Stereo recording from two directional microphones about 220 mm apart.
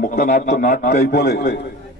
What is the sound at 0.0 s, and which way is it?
A man's voice, 40° left (ahead or behind).